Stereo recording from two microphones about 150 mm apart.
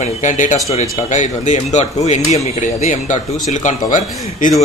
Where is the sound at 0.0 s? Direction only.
55° left (ahead or behind).